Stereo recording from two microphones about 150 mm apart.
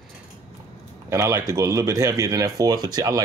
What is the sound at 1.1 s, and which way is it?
Speech, 15° right (ahead or behind).